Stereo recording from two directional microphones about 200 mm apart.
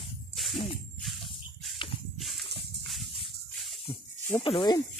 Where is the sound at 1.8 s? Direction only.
25° left (ahead or behind).